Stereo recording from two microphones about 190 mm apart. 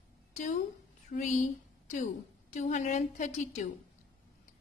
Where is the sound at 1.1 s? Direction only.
45° left (ahead or behind).